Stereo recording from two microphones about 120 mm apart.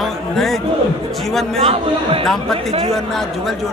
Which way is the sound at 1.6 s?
50° right (ahead or behind).